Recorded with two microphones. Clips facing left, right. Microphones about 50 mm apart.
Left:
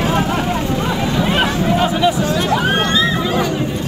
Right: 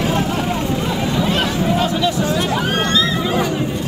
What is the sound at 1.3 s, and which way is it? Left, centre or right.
Chatter, left.